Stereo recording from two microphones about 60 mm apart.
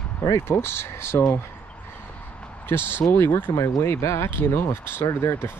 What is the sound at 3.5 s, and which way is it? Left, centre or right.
Speech, left.